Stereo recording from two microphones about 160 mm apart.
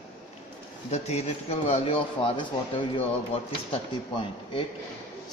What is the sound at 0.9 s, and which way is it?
Speech, 40° left (ahead or behind).